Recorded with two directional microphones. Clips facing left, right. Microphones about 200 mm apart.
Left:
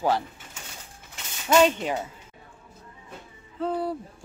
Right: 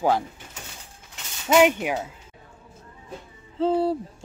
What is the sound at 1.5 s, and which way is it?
Speech, 10° right (ahead or behind).